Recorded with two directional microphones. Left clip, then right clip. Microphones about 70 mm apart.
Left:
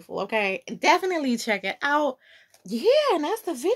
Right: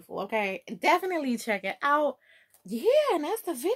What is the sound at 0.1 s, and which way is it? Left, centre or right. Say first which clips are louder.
Speech: left 4 dB; left.